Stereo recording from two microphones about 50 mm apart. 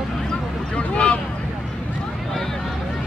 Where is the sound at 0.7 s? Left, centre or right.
Left.